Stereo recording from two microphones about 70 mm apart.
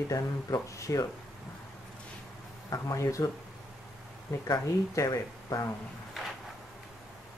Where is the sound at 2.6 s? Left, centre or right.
Left.